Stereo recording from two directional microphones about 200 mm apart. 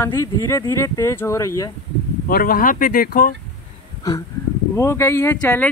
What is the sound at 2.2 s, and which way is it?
Speech, 50° left (ahead or behind).